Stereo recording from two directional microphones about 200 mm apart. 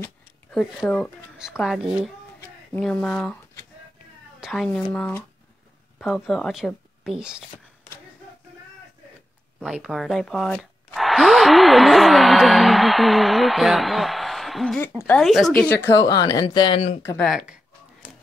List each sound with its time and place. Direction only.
0.0 s a woman's voice: 5° left (ahead or behind)
9.6 s speech: centre (ahead or behind)
15.8 s speech: 20° left (ahead or behind)
17.2 s speech: centre (ahead or behind)
18.0 s music: 5° right (ahead or behind)